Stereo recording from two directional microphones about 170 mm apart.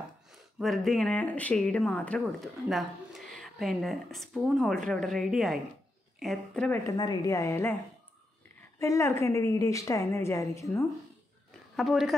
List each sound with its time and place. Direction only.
0.6 s speech: centre (ahead or behind)
6.9 s a woman's voice: 25° left (ahead or behind)
8.7 s a woman's voice: 15° left (ahead or behind)
11.7 s speech: centre (ahead or behind)